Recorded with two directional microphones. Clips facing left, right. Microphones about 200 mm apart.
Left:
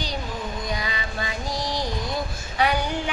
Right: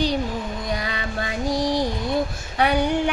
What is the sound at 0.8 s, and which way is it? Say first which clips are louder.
Child singing: right 3 dB; 60° right (ahead or behind).